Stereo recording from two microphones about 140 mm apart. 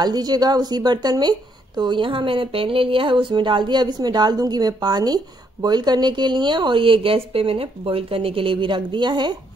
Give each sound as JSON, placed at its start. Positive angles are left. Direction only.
{"t": 0.0, "sound": "a woman's voice", "side_deg": -30}